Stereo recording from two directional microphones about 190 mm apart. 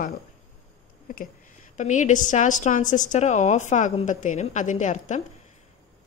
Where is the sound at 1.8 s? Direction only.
40° left (ahead or behind).